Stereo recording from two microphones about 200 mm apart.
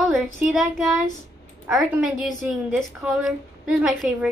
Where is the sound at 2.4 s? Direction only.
5° right (ahead or behind).